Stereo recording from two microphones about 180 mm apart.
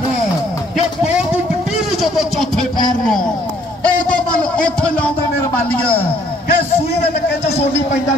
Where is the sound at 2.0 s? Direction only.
Centre (ahead or behind).